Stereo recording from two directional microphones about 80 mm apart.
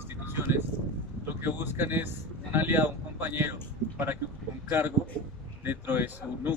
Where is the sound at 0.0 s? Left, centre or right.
Right.